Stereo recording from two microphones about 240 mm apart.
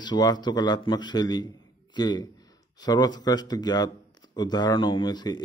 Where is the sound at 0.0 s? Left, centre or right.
Centre.